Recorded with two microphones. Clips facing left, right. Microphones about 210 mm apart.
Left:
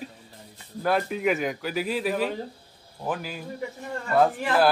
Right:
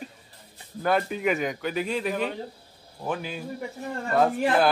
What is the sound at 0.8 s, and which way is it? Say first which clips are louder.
Speech: even; centre (ahead or behind).